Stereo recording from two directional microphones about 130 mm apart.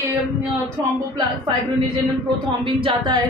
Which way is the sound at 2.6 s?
40° right (ahead or behind).